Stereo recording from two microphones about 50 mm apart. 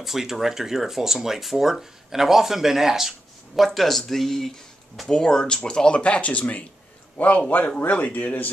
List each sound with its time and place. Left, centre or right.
0.0 s speech: centre; by 8.5 s left